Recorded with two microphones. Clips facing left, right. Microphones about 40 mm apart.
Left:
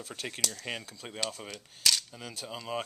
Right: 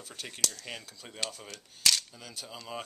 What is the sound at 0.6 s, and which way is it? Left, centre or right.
Speech, left.